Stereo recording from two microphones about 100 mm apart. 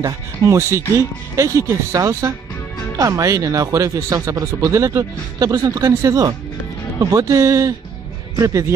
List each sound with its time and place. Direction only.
0.0 s speech: 30° right (ahead or behind)